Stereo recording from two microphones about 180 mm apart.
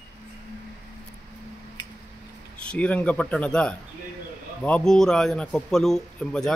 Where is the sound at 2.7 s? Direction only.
5° left (ahead or behind).